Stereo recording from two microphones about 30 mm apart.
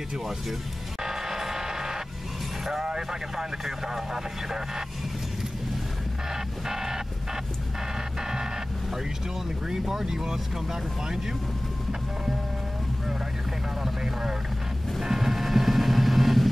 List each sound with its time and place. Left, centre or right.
1.0 s music: centre
2.8 s speech: centre
6.3 s music: centre
8.2 s a sound: centre
9.7 s speech: centre
13.8 s speech: centre
15.0 s vehicle: centre